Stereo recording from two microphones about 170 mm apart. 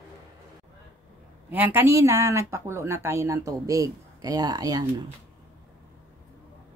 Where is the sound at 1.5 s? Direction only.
10° right (ahead or behind).